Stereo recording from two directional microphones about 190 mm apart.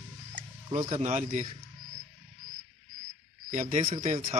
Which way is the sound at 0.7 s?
35° right (ahead or behind).